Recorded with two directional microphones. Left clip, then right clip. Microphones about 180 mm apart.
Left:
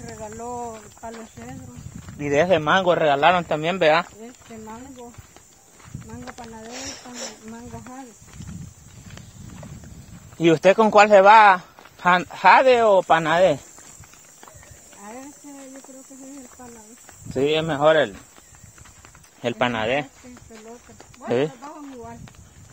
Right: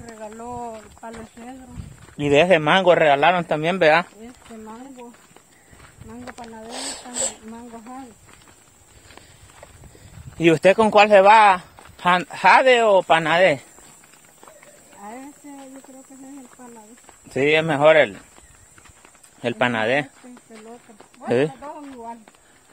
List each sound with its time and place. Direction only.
0.0 s a sound: 20° right (ahead or behind)
0.5 s speech: 35° right (ahead or behind)
1.0 s a man's voice: 20° right (ahead or behind)
2.2 s a man's voice: 40° right (ahead or behind); by 4.8 s 20° right (ahead or behind)
6.3 s a man's voice: 30° right (ahead or behind)
10.3 s a man's voice: 20° right (ahead or behind)
17.3 s speech: 40° right (ahead or behind)
19.4 s speech: 15° right (ahead or behind)
21.2 s speech: 15° right (ahead or behind)